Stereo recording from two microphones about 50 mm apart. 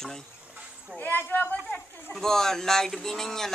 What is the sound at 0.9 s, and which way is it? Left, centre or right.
Speech, left.